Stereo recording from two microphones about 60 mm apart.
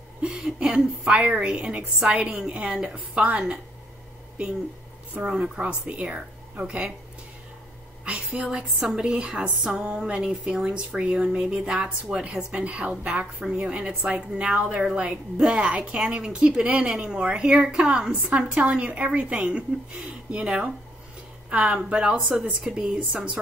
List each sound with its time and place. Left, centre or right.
0.2 s a woman's voice: centre
5.6 s speech: centre
8.0 s a sound: right
8.9 s a woman's voice: centre
22.3 s a woman's voice: centre